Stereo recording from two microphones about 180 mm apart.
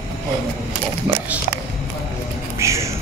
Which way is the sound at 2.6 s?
15° right (ahead or behind).